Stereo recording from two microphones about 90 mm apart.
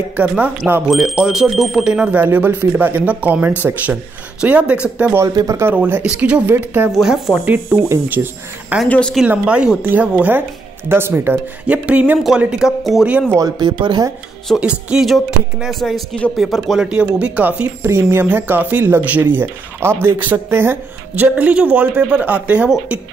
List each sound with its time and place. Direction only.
0.1 s speech: 15° right (ahead or behind)
0.8 s speech: centre (ahead or behind)
5.3 s speech: 45° right (ahead or behind)
5.6 s speech: 25° right (ahead or behind)
6.0 s speech: 10° right (ahead or behind)
8.8 s speech: 15° left (ahead or behind)
9.2 s speech: 10° right (ahead or behind)
11.6 s speech: 15° right (ahead or behind)
13.6 s speech: 60° right (ahead or behind)
14.6 s speech: 10° right (ahead or behind)
15.0 s speech: centre (ahead or behind)
16.8 s speech: 10° right (ahead or behind)